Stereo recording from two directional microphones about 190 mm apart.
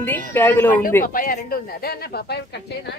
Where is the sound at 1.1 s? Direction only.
50° left (ahead or behind).